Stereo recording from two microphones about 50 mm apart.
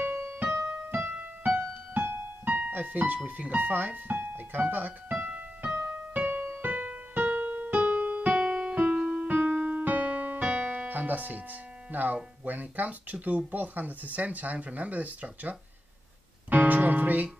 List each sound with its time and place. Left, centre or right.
0.0 s keyboard: right
0.5 s keyboard: right
0.9 s music: right
1.6 s music: right
2.4 s music: right
3.3 s speech: right
4.2 s piano: right
5.9 s keyboard: right
7.8 s keyboard: right
11.9 s speech: right
16.4 s music: right